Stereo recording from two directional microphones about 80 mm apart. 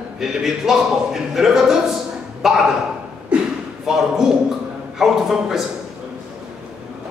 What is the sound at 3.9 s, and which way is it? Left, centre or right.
A man's voice, centre.